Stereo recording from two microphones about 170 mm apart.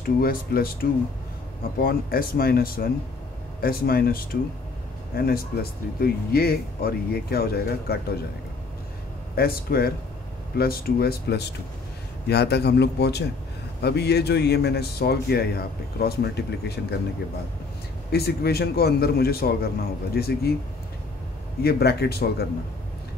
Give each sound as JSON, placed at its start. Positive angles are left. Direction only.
{"t": 0.0, "sound": "speech", "side_deg": 60}
{"t": 9.3, "sound": "speech", "side_deg": 65}
{"t": 18.1, "sound": "speech", "side_deg": 70}
{"t": 21.6, "sound": "speech", "side_deg": 70}